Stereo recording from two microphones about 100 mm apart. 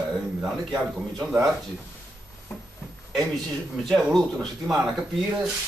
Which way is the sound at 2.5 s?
30° left (ahead or behind).